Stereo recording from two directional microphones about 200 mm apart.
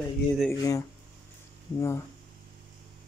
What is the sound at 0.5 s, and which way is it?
Speech, 15° left (ahead or behind).